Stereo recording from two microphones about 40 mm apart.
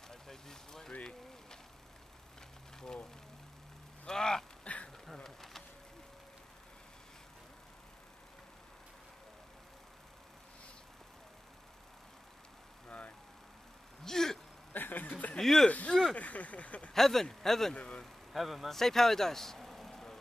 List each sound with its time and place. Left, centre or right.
0.1 s a sound: centre
2.8 s speech: centre
4.0 s vehicle: centre
5.0 s bee: centre
12.8 s vehicle: left
14.0 s a sound: centre
14.7 s a sound: left
15.3 s speech: centre
15.9 s a sound: centre
16.2 s speech: left
16.9 s speech: centre
17.7 s speech: left
18.3 s a man's voice: centre
18.8 s vehicle: centre